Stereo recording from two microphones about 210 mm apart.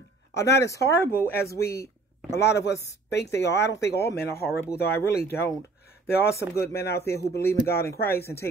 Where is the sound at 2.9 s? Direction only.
55° left (ahead or behind).